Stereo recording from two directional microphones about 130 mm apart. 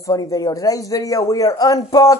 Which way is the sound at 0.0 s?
25° left (ahead or behind).